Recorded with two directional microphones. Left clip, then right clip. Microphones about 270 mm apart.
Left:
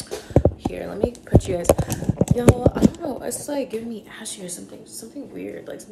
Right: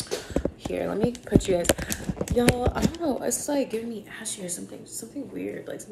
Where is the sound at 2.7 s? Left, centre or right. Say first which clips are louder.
Left 5 dB; centre.